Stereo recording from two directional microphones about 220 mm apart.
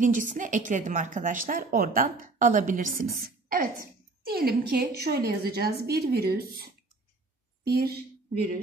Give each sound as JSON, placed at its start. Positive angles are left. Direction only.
{"t": 0.0, "sound": "a woman's voice", "side_deg": -35}